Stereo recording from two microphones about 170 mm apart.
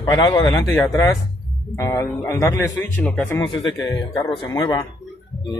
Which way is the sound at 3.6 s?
25° left (ahead or behind).